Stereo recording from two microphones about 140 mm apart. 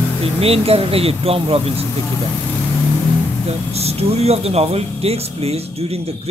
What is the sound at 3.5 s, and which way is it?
Speech, 50° right (ahead or behind).